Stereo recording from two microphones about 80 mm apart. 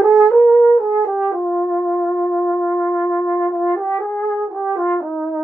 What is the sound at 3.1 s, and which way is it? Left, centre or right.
Brass instrument, left.